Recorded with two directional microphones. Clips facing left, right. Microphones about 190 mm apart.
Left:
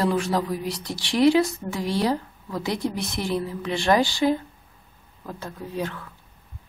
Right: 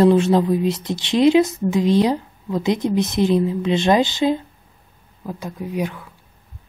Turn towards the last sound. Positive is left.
turn(degrees=-15)  # may be behind; listen again after turning